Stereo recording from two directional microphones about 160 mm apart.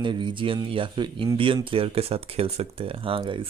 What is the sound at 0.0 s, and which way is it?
Speech, 30° right (ahead or behind).